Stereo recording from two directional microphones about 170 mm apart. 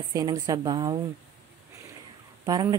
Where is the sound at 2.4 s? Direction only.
20° right (ahead or behind).